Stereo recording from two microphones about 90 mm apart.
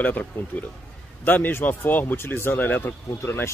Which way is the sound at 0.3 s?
20° left (ahead or behind).